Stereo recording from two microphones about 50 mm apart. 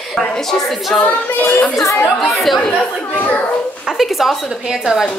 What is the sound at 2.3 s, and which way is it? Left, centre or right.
Speech, centre.